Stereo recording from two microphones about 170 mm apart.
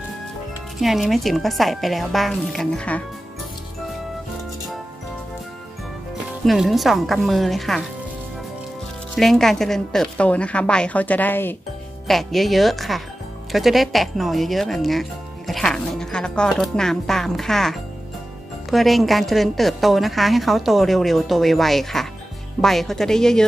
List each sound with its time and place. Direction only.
0.7 s speech: centre (ahead or behind)
6.4 s speech: centre (ahead or behind)
9.1 s a woman's voice: centre (ahead or behind)
12.1 s speech: centre (ahead or behind)